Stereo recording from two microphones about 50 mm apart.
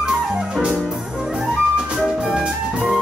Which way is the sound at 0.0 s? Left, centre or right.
Centre.